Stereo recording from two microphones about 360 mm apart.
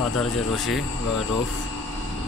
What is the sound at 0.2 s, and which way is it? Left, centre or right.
Speech, centre.